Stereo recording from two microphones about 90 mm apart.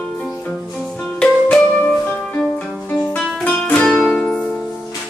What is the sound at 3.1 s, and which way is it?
Music, 15° left (ahead or behind).